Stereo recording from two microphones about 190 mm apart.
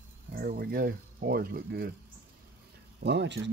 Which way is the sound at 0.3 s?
50° right (ahead or behind).